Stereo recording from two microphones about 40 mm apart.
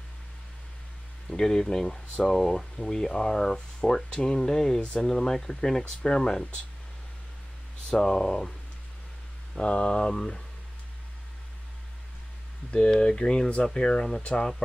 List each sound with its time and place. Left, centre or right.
1.3 s speech: centre
7.9 s speech: centre
9.6 s speech: left
12.7 s speech: left